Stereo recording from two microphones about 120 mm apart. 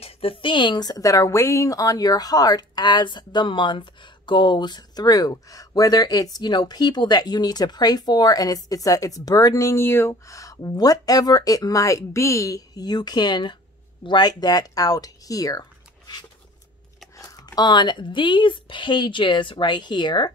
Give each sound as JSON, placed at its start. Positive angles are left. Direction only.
{"t": 0.0, "sound": "speech", "side_deg": 50}
{"t": 17.2, "sound": "speech", "side_deg": 30}